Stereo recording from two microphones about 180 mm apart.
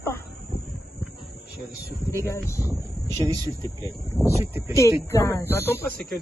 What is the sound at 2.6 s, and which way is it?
Speech, 20° right (ahead or behind).